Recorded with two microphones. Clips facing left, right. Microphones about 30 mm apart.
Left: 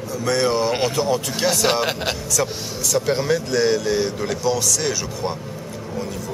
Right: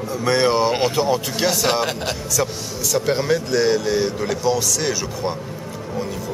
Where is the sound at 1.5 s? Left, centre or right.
Centre.